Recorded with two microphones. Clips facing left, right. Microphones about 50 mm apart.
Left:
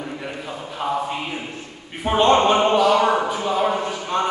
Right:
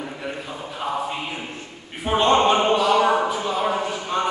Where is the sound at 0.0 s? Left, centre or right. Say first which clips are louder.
Left 1 dB; centre.